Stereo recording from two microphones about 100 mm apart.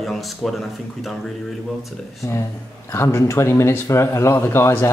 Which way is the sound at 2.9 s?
25° left (ahead or behind).